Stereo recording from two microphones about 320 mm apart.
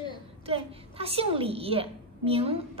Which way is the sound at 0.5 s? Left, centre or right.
Centre.